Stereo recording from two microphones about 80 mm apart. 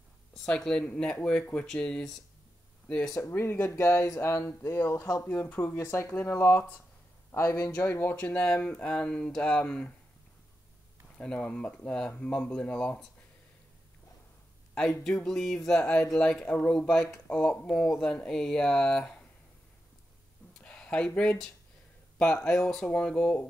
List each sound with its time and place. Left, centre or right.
0.3 s speech: centre
3.2 s speech: left
4.8 s speech: left
5.2 s speech: centre
7.7 s speech: left; by 9.9 s centre
11.1 s speech: centre
14.8 s speech: centre
20.5 s a sound: centre
21.2 s speech: centre